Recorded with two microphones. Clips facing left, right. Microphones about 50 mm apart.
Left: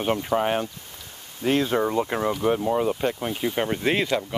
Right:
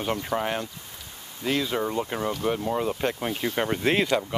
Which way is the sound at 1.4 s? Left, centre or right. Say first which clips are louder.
Left 4 dB; left.